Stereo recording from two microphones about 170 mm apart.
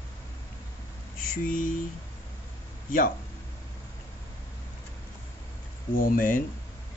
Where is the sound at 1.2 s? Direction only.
55° left (ahead or behind).